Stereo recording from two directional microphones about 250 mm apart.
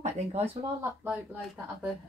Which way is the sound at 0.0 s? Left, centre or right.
Right.